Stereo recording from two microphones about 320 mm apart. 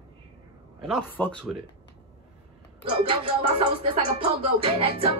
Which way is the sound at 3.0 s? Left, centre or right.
Centre.